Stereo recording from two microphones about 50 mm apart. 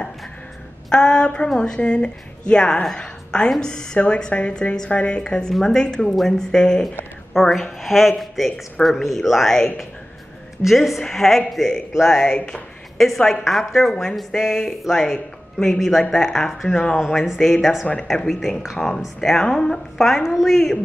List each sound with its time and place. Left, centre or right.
0.8 s speech: centre
5.5 s speech: centre
12.0 s speech: centre
15.1 s speech: centre